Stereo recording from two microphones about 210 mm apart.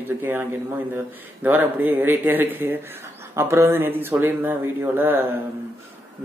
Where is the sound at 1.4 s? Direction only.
10° right (ahead or behind).